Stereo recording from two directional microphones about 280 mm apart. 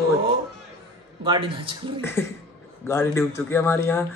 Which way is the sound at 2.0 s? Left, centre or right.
Centre.